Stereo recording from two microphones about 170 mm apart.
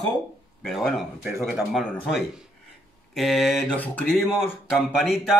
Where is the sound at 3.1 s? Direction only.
Centre (ahead or behind).